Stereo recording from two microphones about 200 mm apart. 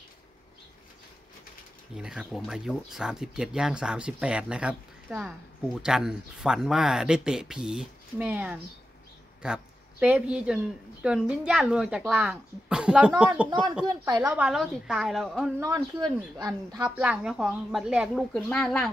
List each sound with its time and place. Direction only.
2.0 s speech: 5° right (ahead or behind)
13.5 s speech: 20° right (ahead or behind)
14.3 s speech: 5° right (ahead or behind)
15.6 s speech: 20° right (ahead or behind)
17.0 s speech: 5° right (ahead or behind)